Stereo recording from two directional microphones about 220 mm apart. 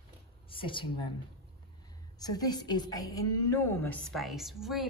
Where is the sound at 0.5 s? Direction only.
25° left (ahead or behind).